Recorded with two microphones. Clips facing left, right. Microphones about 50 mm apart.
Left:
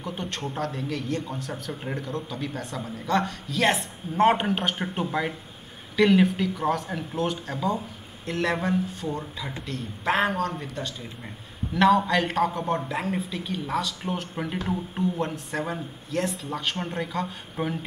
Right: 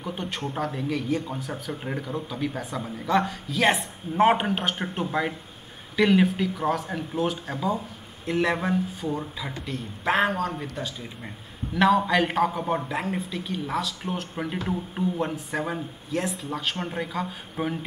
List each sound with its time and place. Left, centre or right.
0.0 s a man's voice: centre